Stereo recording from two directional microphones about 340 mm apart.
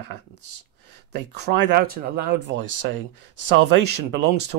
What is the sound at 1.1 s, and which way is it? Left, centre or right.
Speech, right.